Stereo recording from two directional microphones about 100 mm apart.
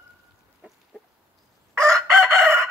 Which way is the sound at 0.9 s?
10° right (ahead or behind).